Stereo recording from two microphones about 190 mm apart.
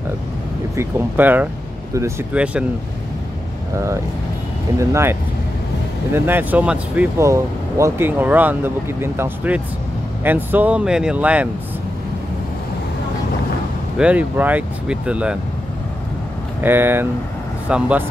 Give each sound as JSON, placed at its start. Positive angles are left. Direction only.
{"t": 0.7, "sound": "speech", "side_deg": -10}
{"t": 3.7, "sound": "speech", "side_deg": -15}
{"t": 6.1, "sound": "speech", "side_deg": -10}
{"t": 13.9, "sound": "speech", "side_deg": -5}
{"t": 16.6, "sound": "speech", "side_deg": -10}